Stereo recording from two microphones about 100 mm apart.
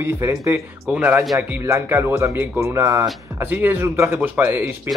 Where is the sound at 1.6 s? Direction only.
25° right (ahead or behind).